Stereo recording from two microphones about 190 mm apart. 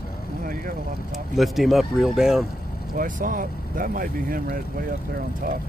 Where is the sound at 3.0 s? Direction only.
45° right (ahead or behind).